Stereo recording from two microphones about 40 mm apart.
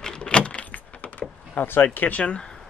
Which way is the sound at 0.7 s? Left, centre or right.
Left.